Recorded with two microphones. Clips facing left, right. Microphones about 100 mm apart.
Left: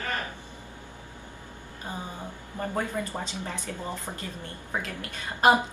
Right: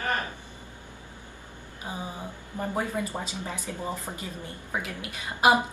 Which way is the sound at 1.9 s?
10° right (ahead or behind).